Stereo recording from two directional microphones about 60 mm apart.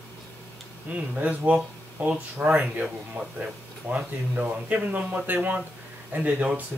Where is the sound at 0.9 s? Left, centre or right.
Right.